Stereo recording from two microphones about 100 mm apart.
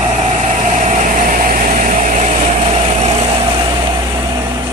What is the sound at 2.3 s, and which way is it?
Vehicle, 90° right.